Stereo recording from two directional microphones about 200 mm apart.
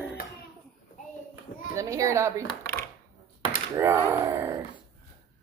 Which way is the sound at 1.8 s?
15° right (ahead or behind).